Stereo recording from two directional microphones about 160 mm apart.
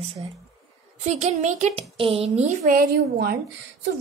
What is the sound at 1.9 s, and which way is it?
A woman's voice, 35° right (ahead or behind).